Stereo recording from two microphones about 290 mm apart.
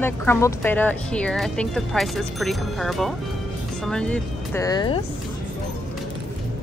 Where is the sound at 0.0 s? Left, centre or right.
Centre.